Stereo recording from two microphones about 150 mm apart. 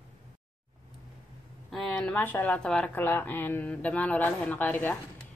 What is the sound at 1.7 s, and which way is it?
Speech, 5° left (ahead or behind).